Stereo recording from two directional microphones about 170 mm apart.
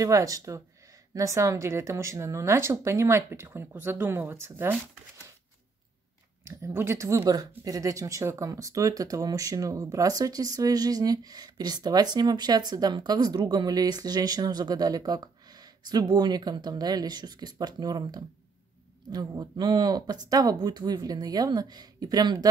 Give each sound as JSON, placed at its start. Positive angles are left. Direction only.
{"t": 0.0, "sound": "speech", "side_deg": -20}
{"t": 6.4, "sound": "speech", "side_deg": -15}